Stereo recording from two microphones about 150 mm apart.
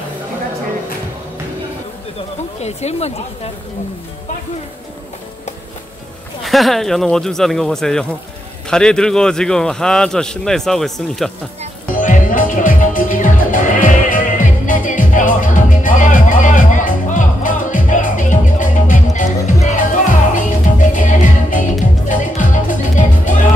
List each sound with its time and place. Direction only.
2.6 s speech: 45° left (ahead or behind)
6.4 s a man's voice: centre (ahead or behind)
11.9 s music: 60° left (ahead or behind)